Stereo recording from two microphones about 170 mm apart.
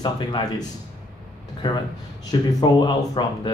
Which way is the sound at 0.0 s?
25° left (ahead or behind).